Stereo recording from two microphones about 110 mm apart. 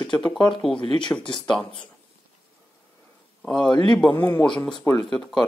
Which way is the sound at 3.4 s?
5° left (ahead or behind).